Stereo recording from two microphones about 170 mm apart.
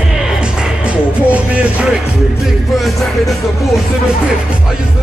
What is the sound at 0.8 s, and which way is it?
Music, 5° right (ahead or behind).